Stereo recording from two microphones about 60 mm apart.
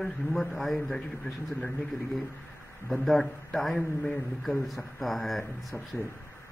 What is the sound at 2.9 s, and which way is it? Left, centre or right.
A man's voice, centre.